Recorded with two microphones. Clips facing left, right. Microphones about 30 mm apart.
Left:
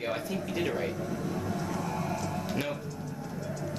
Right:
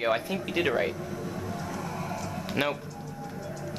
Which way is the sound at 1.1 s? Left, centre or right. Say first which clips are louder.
Left 2 dB; centre.